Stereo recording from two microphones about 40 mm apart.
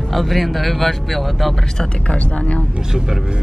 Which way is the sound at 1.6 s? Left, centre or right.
Centre.